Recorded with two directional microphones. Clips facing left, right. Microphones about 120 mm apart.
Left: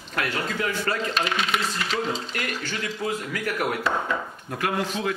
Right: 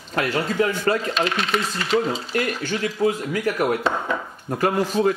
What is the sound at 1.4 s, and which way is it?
Speech, centre (ahead or behind).